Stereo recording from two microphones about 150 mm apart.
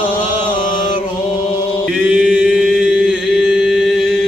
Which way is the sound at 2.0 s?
10° right (ahead or behind).